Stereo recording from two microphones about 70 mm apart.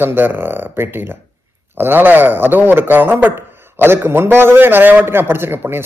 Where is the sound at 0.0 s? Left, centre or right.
Right.